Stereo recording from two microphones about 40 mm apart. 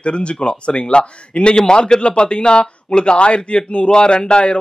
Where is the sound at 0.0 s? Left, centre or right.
Left.